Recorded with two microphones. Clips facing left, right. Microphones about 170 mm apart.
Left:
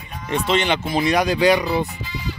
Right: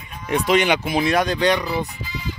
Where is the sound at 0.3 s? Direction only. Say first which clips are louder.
Right 2 dB; 10° right (ahead or behind).